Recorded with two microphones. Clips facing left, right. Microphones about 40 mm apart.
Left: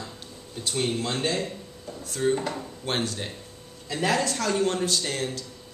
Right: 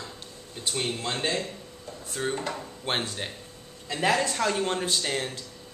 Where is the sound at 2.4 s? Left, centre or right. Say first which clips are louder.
Left 2 dB; centre.